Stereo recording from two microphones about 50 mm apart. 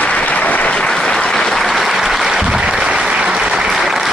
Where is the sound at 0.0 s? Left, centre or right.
Left.